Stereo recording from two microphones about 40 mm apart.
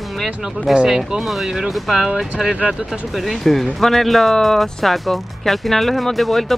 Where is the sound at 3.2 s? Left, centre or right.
Centre.